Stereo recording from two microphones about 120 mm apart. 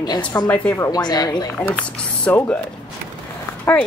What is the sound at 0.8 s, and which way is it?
Speech, 35° left (ahead or behind).